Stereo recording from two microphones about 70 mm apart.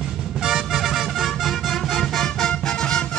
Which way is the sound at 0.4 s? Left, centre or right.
Centre.